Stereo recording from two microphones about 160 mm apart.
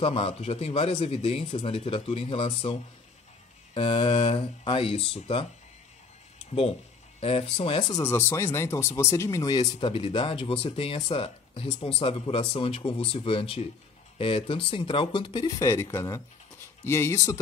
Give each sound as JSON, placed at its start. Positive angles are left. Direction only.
{"t": 0.0, "sound": "speech", "side_deg": 35}
{"t": 7.2, "sound": "speech", "side_deg": 35}
{"t": 7.9, "sound": "speech", "side_deg": 15}